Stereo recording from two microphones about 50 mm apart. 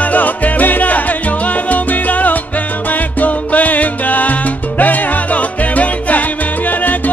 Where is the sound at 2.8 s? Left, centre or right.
Left.